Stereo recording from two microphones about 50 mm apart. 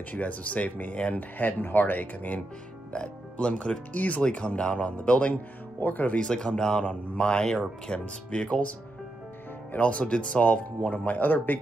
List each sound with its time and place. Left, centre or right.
0.1 s speech: left
1.6 s speech: left
2.9 s speech: left
5.8 s speech: left
6.1 s speech: centre; by 11.6 s left